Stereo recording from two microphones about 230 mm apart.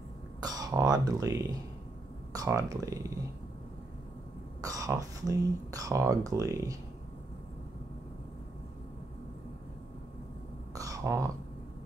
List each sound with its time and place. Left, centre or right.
0.4 s speech: centre
4.6 s speech: centre
10.7 s a sound: centre